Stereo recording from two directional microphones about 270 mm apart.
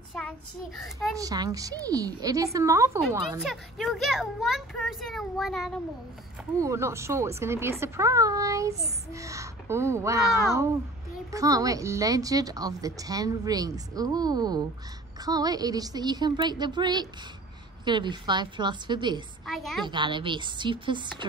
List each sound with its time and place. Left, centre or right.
0.7 s a child's voice: centre
1.1 s a woman's voice: centre
6.6 s a woman's voice: centre
19.4 s a child's voice: centre
19.8 s a woman's voice: centre